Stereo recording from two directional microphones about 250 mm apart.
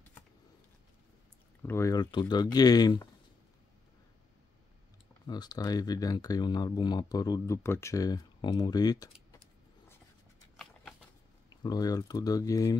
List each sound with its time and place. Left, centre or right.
1.6 s speech: centre
5.2 s speech: centre
10.6 s a sound: centre
11.6 s speech: centre